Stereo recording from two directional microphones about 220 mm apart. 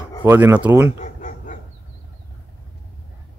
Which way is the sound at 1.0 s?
35° left (ahead or behind).